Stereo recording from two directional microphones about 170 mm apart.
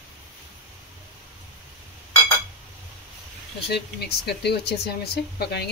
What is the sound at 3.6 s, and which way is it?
Speech, 75° left (ahead or behind).